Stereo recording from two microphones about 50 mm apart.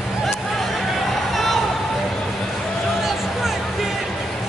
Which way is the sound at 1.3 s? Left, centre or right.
Centre.